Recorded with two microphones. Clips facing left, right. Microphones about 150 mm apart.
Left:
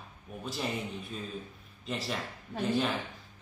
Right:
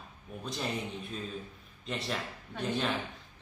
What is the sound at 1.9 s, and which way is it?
Speech, centre (ahead or behind).